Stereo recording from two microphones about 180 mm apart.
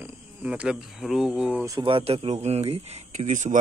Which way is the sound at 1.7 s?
25° right (ahead or behind).